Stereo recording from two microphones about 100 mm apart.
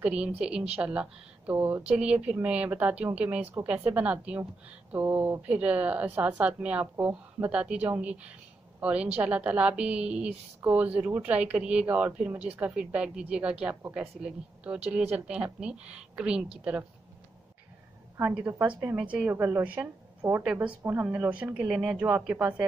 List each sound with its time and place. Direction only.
0.0 s speech: 10° right (ahead or behind)
18.2 s speech: 15° right (ahead or behind)
19.2 s a woman's voice: 20° right (ahead or behind)